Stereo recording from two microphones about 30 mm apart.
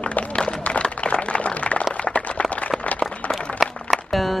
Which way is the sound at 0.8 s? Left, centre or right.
Left.